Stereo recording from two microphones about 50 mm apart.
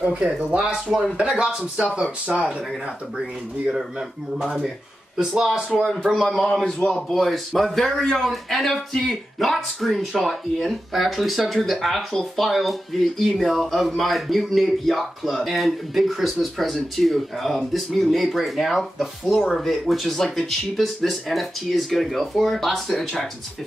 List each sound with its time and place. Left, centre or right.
0.0 s speech: right
6.2 s speech: centre